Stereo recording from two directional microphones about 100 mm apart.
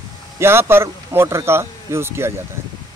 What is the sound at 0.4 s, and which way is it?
Speech, 25° right (ahead or behind).